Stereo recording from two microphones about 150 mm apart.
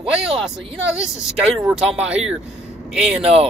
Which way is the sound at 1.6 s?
5° right (ahead or behind).